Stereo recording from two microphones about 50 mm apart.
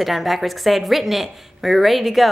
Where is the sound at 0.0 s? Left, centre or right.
Centre.